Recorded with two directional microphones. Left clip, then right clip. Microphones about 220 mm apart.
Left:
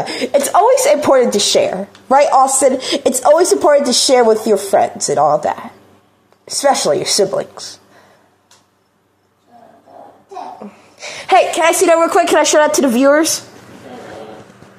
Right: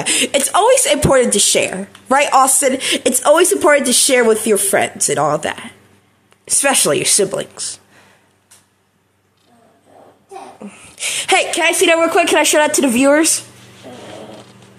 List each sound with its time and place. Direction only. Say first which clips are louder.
0.0 s speech: left 1 dB; 15° right (ahead or behind)
2.2 s a woman's voice: right 1 dB; 25° right (ahead or behind)
2.5 s a woman's voice: left 3 dB; centre (ahead or behind)
3.2 s a woman's voice: left 1 dB; 20° right (ahead or behind)
3.8 s a woman's voice: left 2 dB; centre (ahead or behind)
5.1 s a woman's voice: left 4 dB; 20° right (ahead or behind)
6.8 s speech: left 1 dB; 15° right (ahead or behind)
10.6 s a sound: right 5 dB; 20° right (ahead or behind)
12.0 s speech: left 1 dB; 15° left (ahead or behind)
12.4 s a woman's voice: left 2 dB; 5° right (ahead or behind)